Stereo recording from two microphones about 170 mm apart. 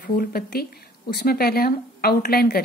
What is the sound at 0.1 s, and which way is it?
A woman's voice, 55° left (ahead or behind).